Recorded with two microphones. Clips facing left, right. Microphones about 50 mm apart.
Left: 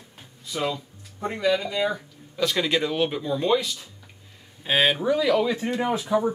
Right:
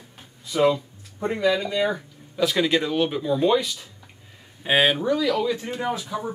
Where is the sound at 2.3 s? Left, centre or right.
Centre.